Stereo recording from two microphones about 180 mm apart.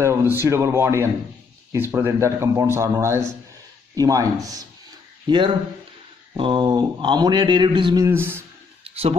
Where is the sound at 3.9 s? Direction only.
20° right (ahead or behind).